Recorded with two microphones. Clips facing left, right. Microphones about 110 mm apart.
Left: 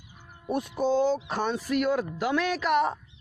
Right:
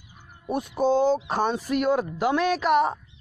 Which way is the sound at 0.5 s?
20° right (ahead or behind).